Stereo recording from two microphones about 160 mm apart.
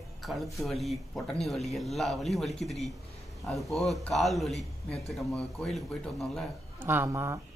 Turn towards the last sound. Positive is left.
turn(degrees=-15)  # may be behind; listen again after turning